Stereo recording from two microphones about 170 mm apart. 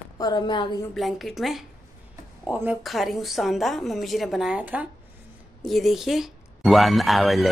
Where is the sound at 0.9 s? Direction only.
Centre (ahead or behind).